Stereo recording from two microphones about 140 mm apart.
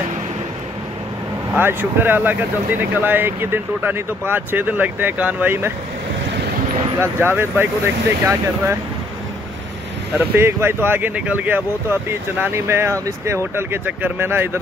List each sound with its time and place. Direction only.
1.6 s speech: 15° right (ahead or behind)
7.0 s speech: 15° right (ahead or behind)
10.1 s speech: 15° right (ahead or behind)